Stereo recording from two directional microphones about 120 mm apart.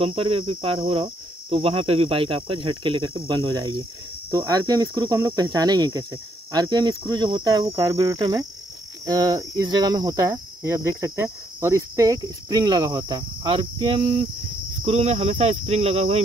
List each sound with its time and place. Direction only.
0.0 s cricket: 50° right (ahead or behind)
3.2 s speech: 35° right (ahead or behind)
10.6 s cricket: 25° right (ahead or behind)
11.6 s speech: 25° right (ahead or behind); by 14.2 s 50° right (ahead or behind)
14.9 s speech: 60° right (ahead or behind)